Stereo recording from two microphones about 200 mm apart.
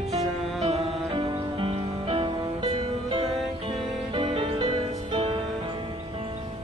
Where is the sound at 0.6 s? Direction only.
30° right (ahead or behind).